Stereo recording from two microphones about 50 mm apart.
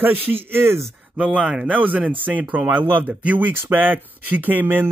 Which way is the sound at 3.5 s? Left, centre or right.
Right.